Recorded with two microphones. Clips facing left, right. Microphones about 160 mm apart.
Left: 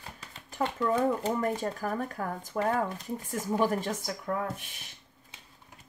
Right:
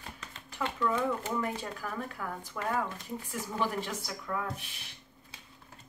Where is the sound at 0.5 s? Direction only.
40° left (ahead or behind).